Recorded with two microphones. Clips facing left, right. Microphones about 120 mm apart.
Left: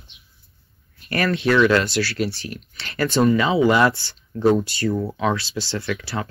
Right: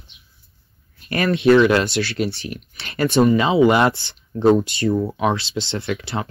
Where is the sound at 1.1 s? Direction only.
20° right (ahead or behind).